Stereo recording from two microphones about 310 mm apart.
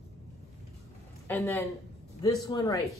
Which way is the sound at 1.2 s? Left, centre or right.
Centre.